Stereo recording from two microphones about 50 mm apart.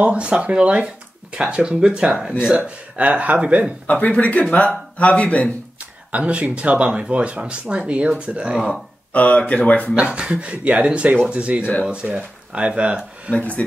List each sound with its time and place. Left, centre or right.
0.0 s speech: right
3.8 s speech: left
5.8 s speech: right
9.1 s speech: left
9.9 s speech: centre
13.3 s speech: left